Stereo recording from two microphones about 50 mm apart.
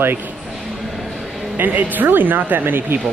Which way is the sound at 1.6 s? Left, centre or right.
Right.